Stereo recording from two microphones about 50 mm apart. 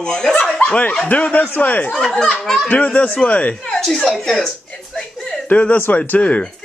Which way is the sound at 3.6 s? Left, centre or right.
Centre.